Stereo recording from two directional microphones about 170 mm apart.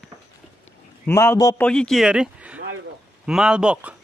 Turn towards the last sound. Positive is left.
turn(degrees=-5)  # may be behind; listen again after turning